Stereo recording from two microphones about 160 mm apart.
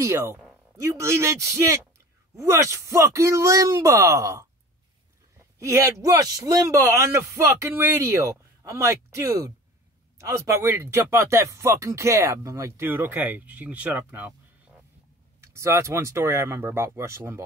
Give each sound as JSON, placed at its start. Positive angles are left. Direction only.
{"t": 0.0, "sound": "a man's voice", "side_deg": -15}